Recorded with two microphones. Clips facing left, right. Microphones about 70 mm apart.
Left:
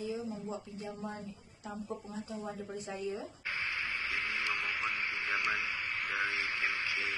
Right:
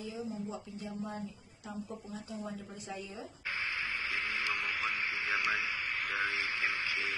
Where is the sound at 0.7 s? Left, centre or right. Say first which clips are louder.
Even; left.